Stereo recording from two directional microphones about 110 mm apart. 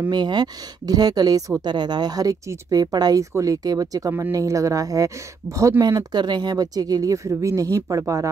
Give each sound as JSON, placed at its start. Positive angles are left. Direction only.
{"t": 0.1, "sound": "a woman's voice", "side_deg": -40}